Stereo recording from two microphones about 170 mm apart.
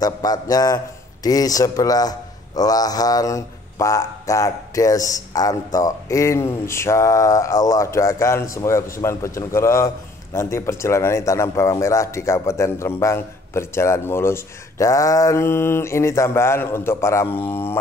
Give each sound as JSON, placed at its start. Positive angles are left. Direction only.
{"t": 0.0, "sound": "a man's voice", "side_deg": 20}